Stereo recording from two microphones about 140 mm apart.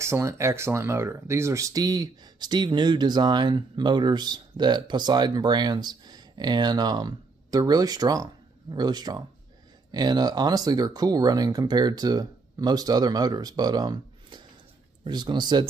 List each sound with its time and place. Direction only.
0.0 s speech: 20° right (ahead or behind)